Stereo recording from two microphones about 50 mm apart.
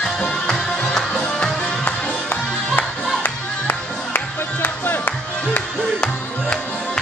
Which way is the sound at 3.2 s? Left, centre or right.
Left.